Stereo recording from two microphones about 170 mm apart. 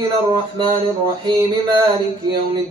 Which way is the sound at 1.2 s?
25° right (ahead or behind).